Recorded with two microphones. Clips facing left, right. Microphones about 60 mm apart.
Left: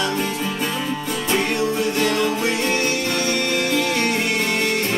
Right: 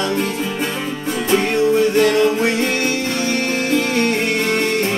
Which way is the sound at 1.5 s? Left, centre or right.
Right.